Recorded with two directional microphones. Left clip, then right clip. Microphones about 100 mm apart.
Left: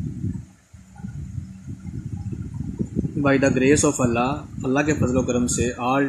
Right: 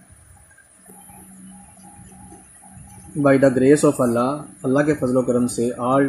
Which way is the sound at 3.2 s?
Centre (ahead or behind).